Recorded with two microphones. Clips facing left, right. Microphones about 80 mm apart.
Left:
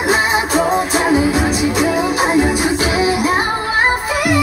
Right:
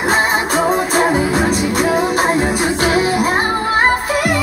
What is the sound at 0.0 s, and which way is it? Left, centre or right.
Music, right.